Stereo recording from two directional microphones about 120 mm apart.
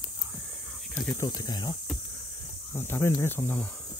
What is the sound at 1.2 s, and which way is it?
Speech, 30° left (ahead or behind).